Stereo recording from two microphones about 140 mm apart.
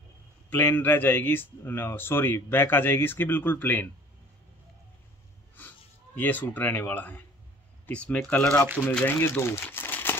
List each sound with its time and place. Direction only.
0.5 s a man's voice: 15° left (ahead or behind)
5.6 s a man's voice: 15° left (ahead or behind)